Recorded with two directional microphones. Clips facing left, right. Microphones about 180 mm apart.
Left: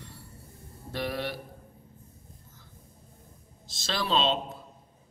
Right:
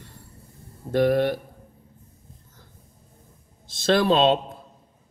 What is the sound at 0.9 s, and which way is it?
Speech, 50° right (ahead or behind).